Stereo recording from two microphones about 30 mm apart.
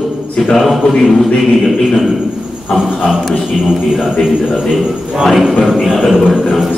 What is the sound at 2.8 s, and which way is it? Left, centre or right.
A man's voice, centre.